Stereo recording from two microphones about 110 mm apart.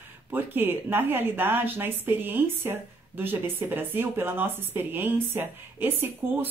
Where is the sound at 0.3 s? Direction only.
20° right (ahead or behind).